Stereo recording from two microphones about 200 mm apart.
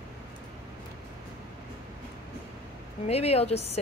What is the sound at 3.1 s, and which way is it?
Speech, 30° left (ahead or behind).